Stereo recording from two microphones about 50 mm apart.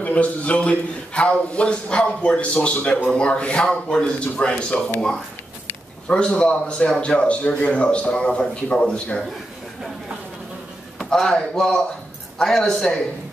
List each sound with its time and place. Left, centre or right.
0.0 s a man's voice: left
6.0 s a man's voice: left
11.1 s speech: centre